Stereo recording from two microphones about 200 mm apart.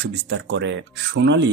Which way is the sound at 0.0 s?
60° right (ahead or behind).